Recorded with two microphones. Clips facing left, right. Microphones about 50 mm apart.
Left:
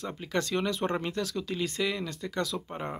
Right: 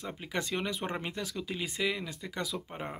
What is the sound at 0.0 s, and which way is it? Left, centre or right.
Speech, centre.